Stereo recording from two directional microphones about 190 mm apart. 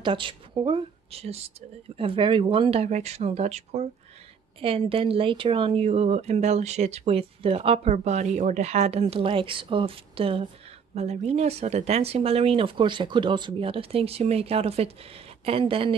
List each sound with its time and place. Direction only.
0.0 s speech: 25° right (ahead or behind)